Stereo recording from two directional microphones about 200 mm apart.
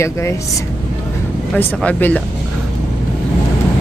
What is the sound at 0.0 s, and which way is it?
Speech, 15° left (ahead or behind).